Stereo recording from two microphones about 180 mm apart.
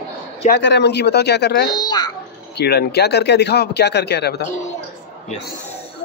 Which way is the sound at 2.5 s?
65° left (ahead or behind).